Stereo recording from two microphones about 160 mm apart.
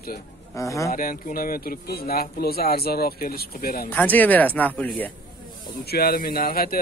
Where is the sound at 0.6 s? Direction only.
20° left (ahead or behind).